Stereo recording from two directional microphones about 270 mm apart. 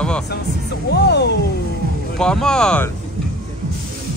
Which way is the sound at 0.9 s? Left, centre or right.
Left.